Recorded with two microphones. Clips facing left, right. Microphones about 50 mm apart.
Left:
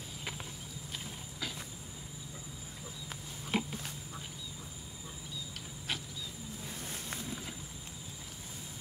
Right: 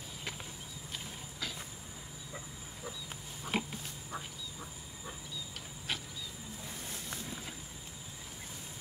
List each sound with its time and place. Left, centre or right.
0.2 s a sound: centre
0.9 s vehicle: centre
3.5 s pig: centre
5.9 s vehicle: centre
6.8 s vehicle: left
7.2 s a sound: centre